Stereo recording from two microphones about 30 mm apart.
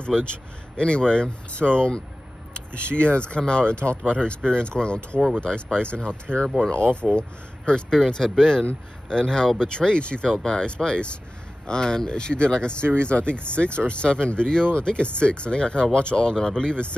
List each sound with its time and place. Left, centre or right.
0.0 s a man's voice: left
8.1 s speech: centre; by 11.1 s left
11.6 s speech: left